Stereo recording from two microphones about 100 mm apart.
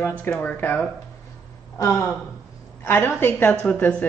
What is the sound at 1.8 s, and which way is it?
A woman's voice, 30° left (ahead or behind).